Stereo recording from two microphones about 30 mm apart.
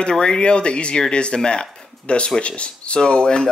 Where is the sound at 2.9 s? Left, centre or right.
Left.